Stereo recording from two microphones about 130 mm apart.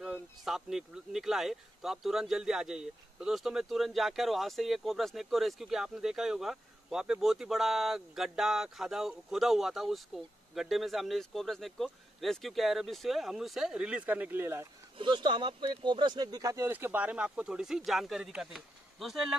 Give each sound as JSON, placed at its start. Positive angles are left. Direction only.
{"t": 0.0, "sound": "speech", "side_deg": -5}
{"t": 15.0, "sound": "speech", "side_deg": -35}
{"t": 16.7, "sound": "speech", "side_deg": -15}